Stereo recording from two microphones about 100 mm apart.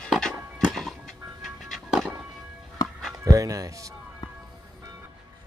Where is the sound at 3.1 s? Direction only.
35° right (ahead or behind).